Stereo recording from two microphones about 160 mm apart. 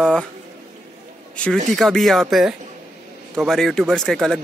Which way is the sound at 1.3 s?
5° left (ahead or behind).